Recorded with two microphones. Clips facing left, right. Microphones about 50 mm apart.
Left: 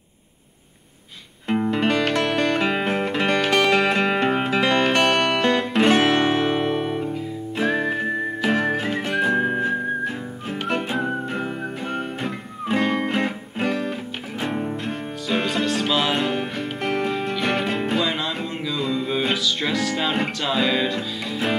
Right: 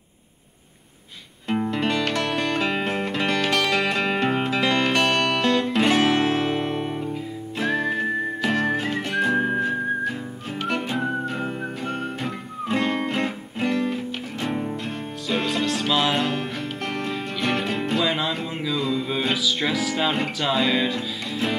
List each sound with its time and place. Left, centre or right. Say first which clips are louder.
1.5 s music: left 3 dB; centre
2.0 s music: left 3 dB; centre